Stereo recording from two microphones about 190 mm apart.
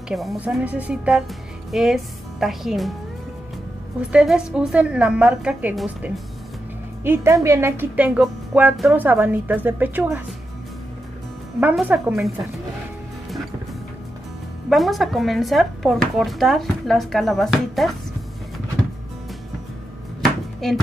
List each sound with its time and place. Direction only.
0.1 s speech: centre (ahead or behind)
4.1 s a woman's voice: 5° right (ahead or behind)
11.6 s speech: 10° right (ahead or behind)
14.7 s speech: centre (ahead or behind)
20.2 s chopping: centre (ahead or behind)